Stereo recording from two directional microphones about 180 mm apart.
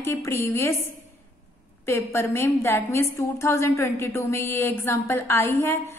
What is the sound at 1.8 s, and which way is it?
A woman's voice, 15° left (ahead or behind).